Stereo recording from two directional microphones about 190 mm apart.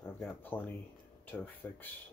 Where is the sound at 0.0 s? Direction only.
10° left (ahead or behind).